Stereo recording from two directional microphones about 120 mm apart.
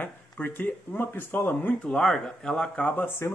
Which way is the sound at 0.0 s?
15° left (ahead or behind).